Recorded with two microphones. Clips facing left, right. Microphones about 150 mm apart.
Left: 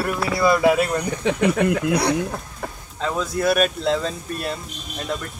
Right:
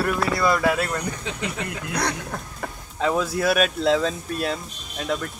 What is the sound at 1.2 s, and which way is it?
Speech, 65° left (ahead or behind).